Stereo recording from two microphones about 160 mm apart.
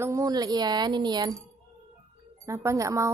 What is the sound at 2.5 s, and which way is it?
Speech, 20° right (ahead or behind).